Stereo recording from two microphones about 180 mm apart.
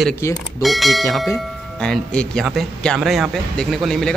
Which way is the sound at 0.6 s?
Centre (ahead or behind).